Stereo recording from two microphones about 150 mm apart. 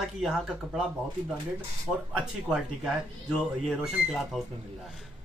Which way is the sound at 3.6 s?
Centre (ahead or behind).